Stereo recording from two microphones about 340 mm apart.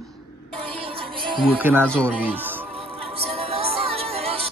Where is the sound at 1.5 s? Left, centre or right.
Centre.